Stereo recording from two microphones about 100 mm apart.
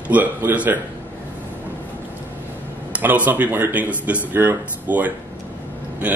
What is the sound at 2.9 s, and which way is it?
A man's voice, 15° right (ahead or behind).